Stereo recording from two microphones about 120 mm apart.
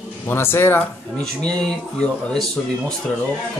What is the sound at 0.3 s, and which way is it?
Speech, 20° left (ahead or behind).